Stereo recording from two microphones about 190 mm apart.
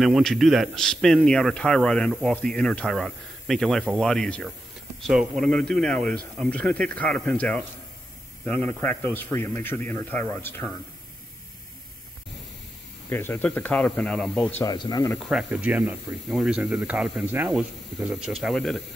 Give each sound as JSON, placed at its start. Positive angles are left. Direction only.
{"t": 0.0, "sound": "speech", "side_deg": 0}
{"t": 13.1, "sound": "speech", "side_deg": 10}
{"t": 14.6, "sound": "speech", "side_deg": 20}
{"t": 15.1, "sound": "speech", "side_deg": 0}